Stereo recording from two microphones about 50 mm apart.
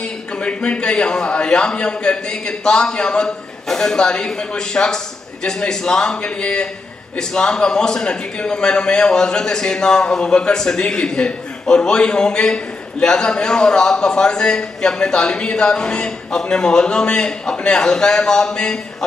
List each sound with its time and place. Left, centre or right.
0.4 s a man's voice: left